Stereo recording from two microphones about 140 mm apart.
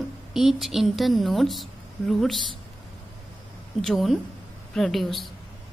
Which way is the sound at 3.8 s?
Centre (ahead or behind).